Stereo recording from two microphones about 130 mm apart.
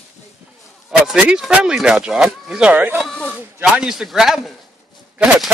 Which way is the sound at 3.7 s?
5° right (ahead or behind).